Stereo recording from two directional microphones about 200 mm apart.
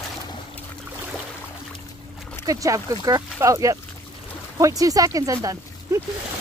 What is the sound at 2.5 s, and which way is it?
Speech, 15° right (ahead or behind).